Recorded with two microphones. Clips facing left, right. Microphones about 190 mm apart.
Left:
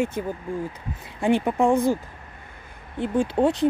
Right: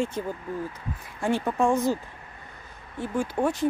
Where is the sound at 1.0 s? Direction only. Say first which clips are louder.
Left 5 dB; 20° left (ahead or behind).